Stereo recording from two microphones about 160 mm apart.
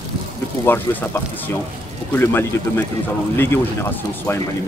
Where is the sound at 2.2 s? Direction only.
15° left (ahead or behind).